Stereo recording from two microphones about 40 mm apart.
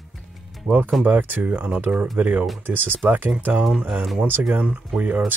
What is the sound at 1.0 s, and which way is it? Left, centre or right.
Speech, right.